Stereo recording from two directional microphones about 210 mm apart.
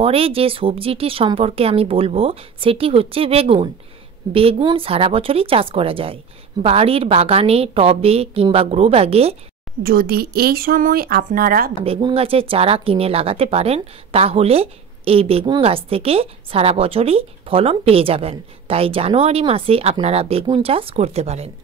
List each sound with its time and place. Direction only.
0.0 s speech: 25° right (ahead or behind)
9.8 s speech: 45° right (ahead or behind)
11.8 s speech: 25° right (ahead or behind)